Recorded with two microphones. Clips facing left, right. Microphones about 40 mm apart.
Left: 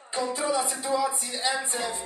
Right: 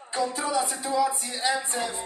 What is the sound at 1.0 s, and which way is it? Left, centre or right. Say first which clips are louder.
Speech: right 3 dB; centre.